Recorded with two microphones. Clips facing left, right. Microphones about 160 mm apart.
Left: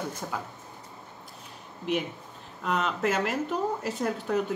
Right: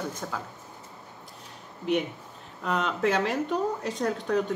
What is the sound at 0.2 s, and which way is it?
Speech, 10° left (ahead or behind).